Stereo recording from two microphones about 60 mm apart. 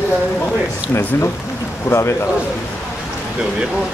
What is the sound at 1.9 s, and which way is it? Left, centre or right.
Speech, left.